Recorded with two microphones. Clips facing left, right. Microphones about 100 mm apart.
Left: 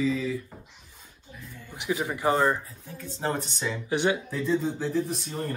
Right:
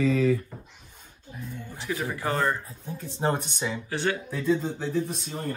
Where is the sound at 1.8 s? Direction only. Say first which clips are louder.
Left 2 dB; 15° left (ahead or behind).